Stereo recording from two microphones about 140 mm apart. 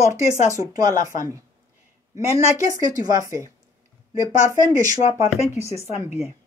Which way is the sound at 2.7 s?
25° right (ahead or behind).